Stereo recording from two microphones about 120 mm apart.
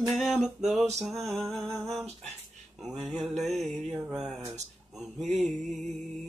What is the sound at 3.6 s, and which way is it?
Music, 5° left (ahead or behind).